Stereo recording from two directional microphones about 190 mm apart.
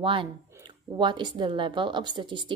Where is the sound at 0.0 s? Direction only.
25° right (ahead or behind).